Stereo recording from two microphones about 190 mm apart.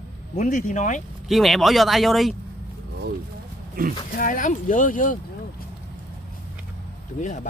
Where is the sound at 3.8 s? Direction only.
50° right (ahead or behind).